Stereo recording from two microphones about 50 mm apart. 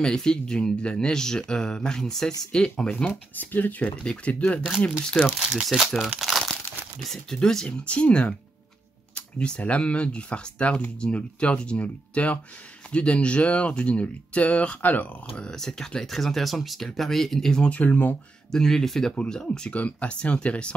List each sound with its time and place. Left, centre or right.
0.0 s speech: centre
3.3 s speech: left
4.0 s speech: centre
4.9 s speech: centre
5.7 s speech: centre
6.1 s crumpling: centre
7.0 s speech: centre
7.3 s speech: centre; by 15.0 s left
15.3 s speech: centre
17.6 s speech: left
18.5 s speech: centre
19.7 s speech: left